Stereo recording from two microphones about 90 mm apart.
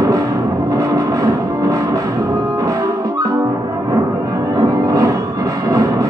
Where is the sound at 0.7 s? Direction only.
40° right (ahead or behind).